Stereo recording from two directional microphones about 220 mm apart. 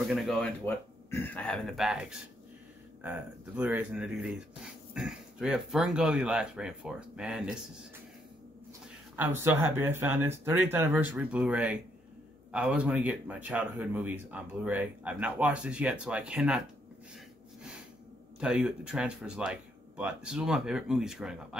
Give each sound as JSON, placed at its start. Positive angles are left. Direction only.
{"t": 0.1, "sound": "speech", "side_deg": 0}
{"t": 9.1, "sound": "speech", "side_deg": -10}
{"t": 18.4, "sound": "speech", "side_deg": -5}